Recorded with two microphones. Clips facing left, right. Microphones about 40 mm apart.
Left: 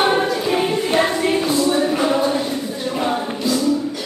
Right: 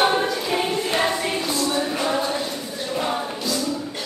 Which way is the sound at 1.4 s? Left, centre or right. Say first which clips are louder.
Left 6 dB; centre.